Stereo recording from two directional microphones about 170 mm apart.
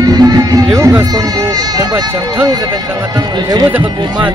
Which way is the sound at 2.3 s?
20° right (ahead or behind).